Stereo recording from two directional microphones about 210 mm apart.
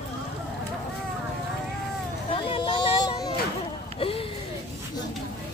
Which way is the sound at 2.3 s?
25° left (ahead or behind).